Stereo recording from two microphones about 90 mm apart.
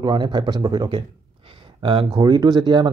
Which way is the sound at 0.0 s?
55° right (ahead or behind).